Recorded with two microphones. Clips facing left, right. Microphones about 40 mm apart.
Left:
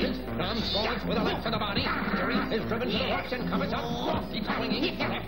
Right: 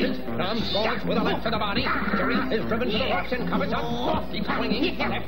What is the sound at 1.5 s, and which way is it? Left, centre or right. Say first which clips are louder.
Speech: right 4 dB; centre.